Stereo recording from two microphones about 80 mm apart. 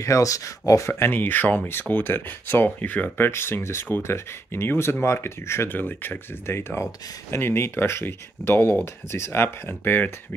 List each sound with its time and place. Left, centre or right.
0.0 s speech: left; by 3.3 s centre
3.3 s speech: left